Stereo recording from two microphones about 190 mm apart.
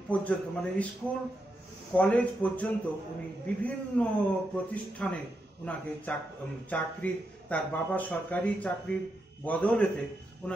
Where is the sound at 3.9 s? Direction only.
5° left (ahead or behind).